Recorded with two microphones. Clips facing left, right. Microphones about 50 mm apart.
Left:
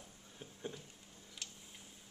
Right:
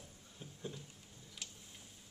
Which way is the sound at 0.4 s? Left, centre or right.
Left.